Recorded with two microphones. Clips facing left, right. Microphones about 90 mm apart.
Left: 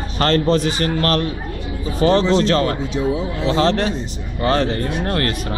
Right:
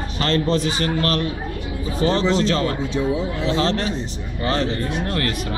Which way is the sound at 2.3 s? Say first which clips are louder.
Left 4 dB; 55° left (ahead or behind).